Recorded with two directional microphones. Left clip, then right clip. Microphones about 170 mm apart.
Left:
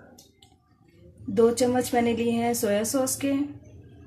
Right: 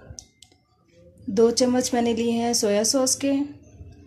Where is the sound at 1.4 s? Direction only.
45° right (ahead or behind).